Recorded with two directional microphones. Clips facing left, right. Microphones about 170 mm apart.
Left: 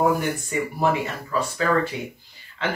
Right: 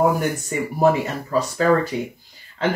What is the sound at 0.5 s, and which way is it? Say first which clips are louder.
Speech: left 2 dB; 40° right (ahead or behind).